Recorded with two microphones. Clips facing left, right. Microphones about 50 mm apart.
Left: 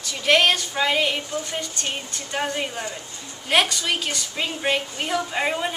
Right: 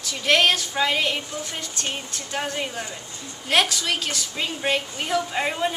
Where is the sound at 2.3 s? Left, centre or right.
Centre.